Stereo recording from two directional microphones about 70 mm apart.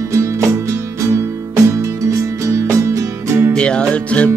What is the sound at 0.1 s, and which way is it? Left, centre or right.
Music, right.